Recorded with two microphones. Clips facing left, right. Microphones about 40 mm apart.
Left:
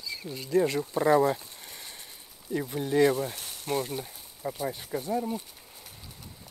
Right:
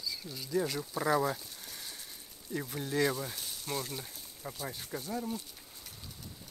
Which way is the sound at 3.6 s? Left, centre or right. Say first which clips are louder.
Left 8 dB; left.